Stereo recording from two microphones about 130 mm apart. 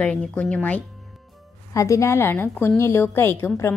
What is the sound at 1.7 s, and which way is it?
A woman's voice, 25° left (ahead or behind).